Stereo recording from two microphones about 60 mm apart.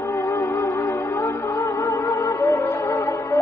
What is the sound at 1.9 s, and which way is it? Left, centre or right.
Music, left.